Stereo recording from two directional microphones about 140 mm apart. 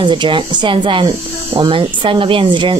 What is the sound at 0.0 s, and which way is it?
Speech, 35° right (ahead or behind).